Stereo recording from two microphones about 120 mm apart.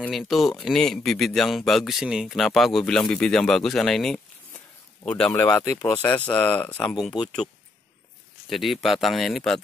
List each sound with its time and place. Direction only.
0.1 s a man's voice: centre (ahead or behind)
5.6 s speech: 30° left (ahead or behind)
5.9 s speech: 15° left (ahead or behind)
8.5 s speech: centre (ahead or behind)